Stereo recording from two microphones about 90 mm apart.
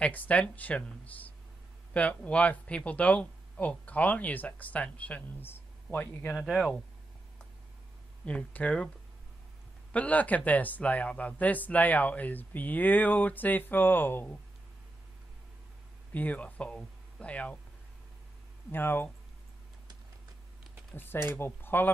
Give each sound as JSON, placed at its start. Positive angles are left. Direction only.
{"t": 0.0, "sound": "speech", "side_deg": 15}
{"t": 6.3, "sound": "speech", "side_deg": 0}
{"t": 8.3, "sound": "speech", "side_deg": 15}
{"t": 9.9, "sound": "speech", "side_deg": 15}
{"t": 16.1, "sound": "speech", "side_deg": 15}
{"t": 18.7, "sound": "speech", "side_deg": 25}
{"t": 20.9, "sound": "speech", "side_deg": 25}